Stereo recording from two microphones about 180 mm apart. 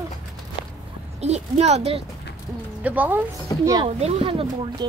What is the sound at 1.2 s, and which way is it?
Speech, 35° right (ahead or behind).